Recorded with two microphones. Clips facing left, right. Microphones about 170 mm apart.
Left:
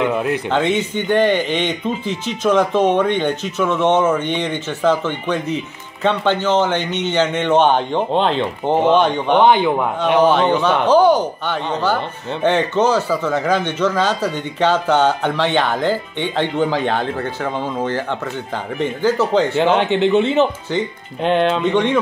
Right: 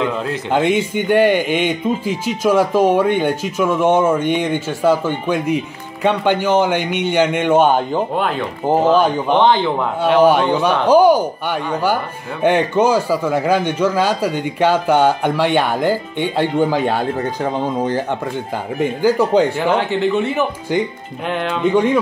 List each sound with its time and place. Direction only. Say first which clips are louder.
0.0 s speech: left 2 dB; 15° left (ahead or behind)
0.5 s a man's voice: right 6 dB; 10° right (ahead or behind)
8.1 s speech: left 3 dB; 25° left (ahead or behind)
8.6 s speech: right 1 dB; 5° right (ahead or behind)
9.4 s a man's voice: left 2 dB; 15° left (ahead or behind)
10.2 s a man's voice: even; 10° right (ahead or behind)
19.8 s speech: left 2 dB; 20° left (ahead or behind)
21.6 s a man's voice: right 2 dB; 5° right (ahead or behind)